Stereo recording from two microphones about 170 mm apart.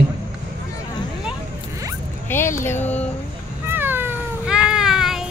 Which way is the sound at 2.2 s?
15° left (ahead or behind).